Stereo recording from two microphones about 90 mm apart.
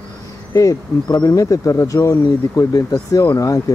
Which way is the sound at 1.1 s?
45° left (ahead or behind).